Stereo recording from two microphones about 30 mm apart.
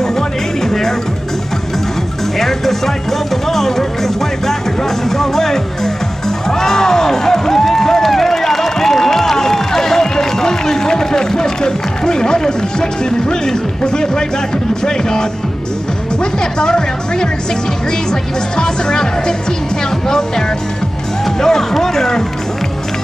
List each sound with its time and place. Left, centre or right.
0.7 s music: centre
2.3 s music: centre
13.3 s speech: left
18.6 s speech: left